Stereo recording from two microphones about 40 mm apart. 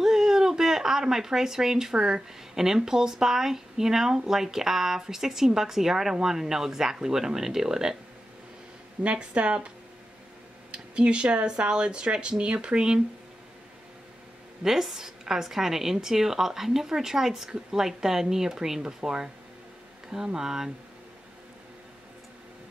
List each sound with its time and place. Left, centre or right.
0.0 s speech: centre
9.0 s speech: right
10.7 s speech: right
14.6 s speech: centre
20.3 s speech: centre